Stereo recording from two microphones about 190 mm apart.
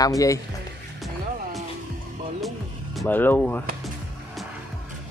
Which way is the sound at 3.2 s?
10° left (ahead or behind).